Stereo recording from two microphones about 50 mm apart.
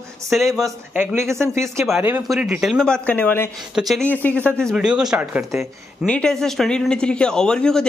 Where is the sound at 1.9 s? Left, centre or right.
Right.